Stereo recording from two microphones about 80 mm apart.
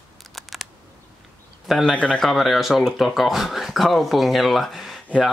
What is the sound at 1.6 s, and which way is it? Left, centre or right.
Speech, centre.